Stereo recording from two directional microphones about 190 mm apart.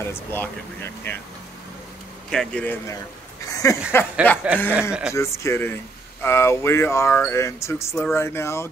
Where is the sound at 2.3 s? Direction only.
5° left (ahead or behind).